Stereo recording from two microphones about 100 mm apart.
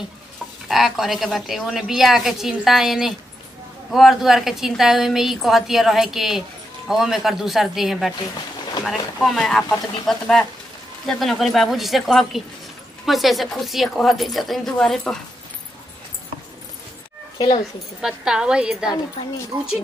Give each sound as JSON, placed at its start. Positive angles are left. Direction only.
{"t": 0.7, "sound": "a woman's voice", "side_deg": 0}
{"t": 18.0, "sound": "a woman's voice", "side_deg": -5}
{"t": 19.5, "sound": "speech", "side_deg": -40}